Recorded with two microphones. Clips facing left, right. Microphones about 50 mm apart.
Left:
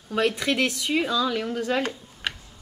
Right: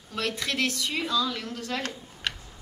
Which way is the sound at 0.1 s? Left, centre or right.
Centre.